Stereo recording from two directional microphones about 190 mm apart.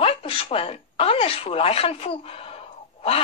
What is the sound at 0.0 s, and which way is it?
Speech, 30° left (ahead or behind).